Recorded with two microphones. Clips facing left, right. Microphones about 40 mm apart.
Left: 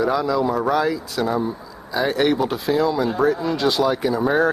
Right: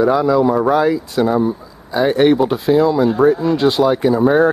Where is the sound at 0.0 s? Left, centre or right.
Centre.